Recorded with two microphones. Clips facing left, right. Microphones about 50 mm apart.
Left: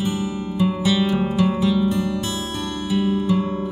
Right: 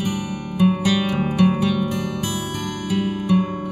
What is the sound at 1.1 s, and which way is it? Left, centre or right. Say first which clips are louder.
Music: right 1 dB; right.